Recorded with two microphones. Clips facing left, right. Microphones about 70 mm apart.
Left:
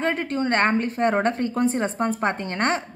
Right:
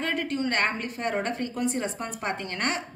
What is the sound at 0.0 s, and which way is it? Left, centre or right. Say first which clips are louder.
A woman's voice: left 4 dB; left.